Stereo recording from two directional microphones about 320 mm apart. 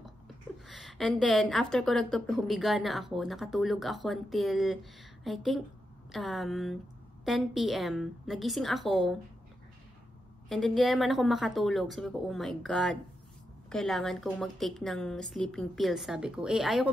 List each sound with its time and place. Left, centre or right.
0.7 s a woman's voice: centre
10.5 s a woman's voice: centre